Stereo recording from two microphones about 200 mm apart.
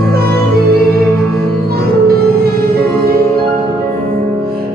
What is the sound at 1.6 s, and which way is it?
Music, 50° right (ahead or behind).